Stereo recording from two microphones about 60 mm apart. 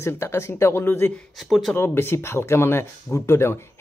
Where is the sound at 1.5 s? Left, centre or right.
Centre.